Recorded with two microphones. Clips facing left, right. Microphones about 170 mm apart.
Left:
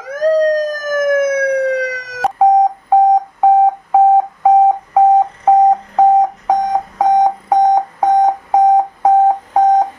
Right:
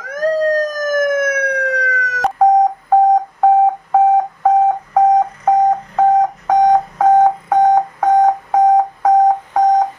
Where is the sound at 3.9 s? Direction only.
10° left (ahead or behind).